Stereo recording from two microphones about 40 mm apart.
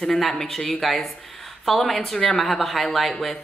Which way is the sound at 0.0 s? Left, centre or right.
Centre.